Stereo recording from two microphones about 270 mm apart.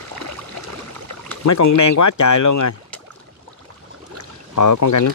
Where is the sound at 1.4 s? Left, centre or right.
Left.